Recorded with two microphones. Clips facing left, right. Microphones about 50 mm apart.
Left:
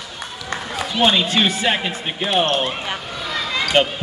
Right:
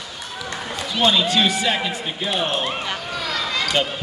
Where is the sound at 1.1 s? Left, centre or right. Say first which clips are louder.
Even; left.